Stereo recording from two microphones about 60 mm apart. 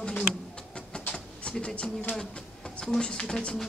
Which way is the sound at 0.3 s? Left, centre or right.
Centre.